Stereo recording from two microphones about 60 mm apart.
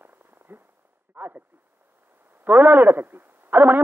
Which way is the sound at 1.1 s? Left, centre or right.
Right.